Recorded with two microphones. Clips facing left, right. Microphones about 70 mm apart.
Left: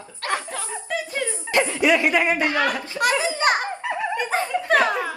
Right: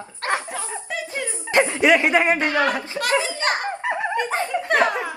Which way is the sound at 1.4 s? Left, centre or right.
Right.